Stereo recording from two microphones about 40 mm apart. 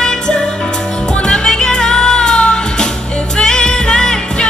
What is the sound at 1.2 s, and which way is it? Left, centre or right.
Music, centre.